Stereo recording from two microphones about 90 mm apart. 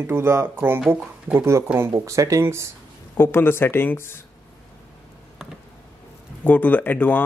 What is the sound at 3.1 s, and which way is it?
Speech, 25° left (ahead or behind).